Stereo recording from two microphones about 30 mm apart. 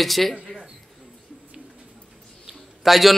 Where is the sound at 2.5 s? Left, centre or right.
Centre.